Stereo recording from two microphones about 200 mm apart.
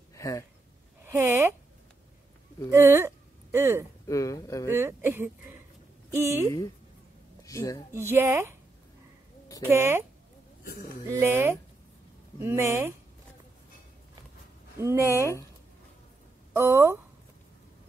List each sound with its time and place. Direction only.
0.1 s a sound: 15° left (ahead or behind)
1.0 s speech: 10° right (ahead or behind)
2.7 s speech: 10° right (ahead or behind)
4.1 s speech: 15° left (ahead or behind)
4.6 s speech: 10° right (ahead or behind)
7.4 s a woman's voice: 15° left (ahead or behind)
7.9 s speech: 10° right (ahead or behind)
9.7 s speech: 10° right (ahead or behind)
10.6 s a man's voice: 50° left (ahead or behind)
11.1 s speech: 10° right (ahead or behind)
14.8 s speech: 15° right (ahead or behind)
16.5 s speech: 10° right (ahead or behind)